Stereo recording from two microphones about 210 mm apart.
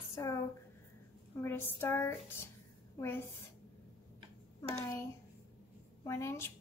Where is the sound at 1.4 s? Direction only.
10° left (ahead or behind).